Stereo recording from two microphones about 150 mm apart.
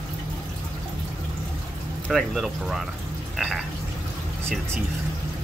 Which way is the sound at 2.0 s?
Centre (ahead or behind).